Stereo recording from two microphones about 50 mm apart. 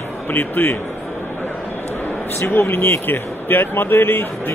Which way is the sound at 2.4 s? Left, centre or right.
Left.